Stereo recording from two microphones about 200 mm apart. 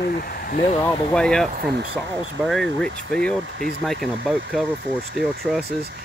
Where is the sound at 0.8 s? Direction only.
5° left (ahead or behind).